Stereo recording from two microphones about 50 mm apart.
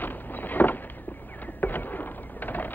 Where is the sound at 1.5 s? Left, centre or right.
Left.